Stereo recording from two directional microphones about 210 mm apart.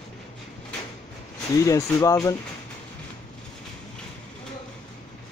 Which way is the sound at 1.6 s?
15° left (ahead or behind).